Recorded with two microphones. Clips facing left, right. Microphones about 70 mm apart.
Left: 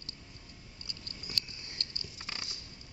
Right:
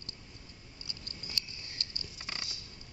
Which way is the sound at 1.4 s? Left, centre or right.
Left.